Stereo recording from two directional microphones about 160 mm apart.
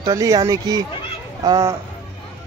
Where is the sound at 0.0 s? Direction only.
20° right (ahead or behind).